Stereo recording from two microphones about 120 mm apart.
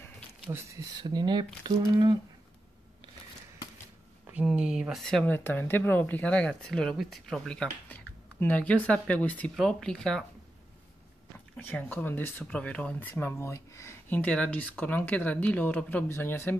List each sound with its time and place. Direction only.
0.5 s speech: 25° right (ahead or behind)
1.2 s speech: 40° right (ahead or behind)
4.5 s speech: 5° right (ahead or behind)
5.0 s speech: 10° left (ahead or behind)
11.3 s speech: 15° left (ahead or behind)
13.1 s speech: 20° left (ahead or behind)